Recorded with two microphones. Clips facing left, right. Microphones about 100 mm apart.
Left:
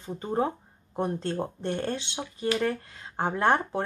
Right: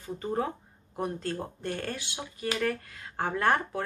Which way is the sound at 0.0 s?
20° left (ahead or behind).